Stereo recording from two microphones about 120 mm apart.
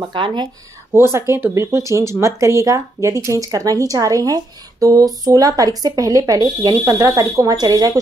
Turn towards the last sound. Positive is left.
turn(degrees=-30)  # may be behind; listen again after turning